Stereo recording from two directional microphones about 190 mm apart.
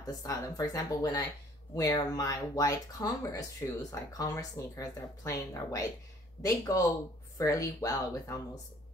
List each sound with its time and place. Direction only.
0.0 s speech: 20° left (ahead or behind)